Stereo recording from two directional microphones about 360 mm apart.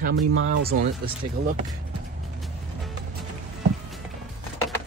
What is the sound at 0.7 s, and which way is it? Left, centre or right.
Speech, right.